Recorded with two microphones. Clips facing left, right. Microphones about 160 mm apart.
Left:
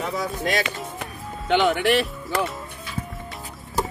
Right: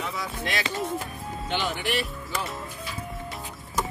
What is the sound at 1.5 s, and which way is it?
Speech, 65° left (ahead or behind).